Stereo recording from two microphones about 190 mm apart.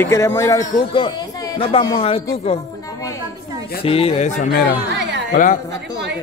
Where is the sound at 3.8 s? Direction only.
30° left (ahead or behind).